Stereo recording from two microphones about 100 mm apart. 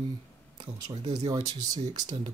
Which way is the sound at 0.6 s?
40° right (ahead or behind).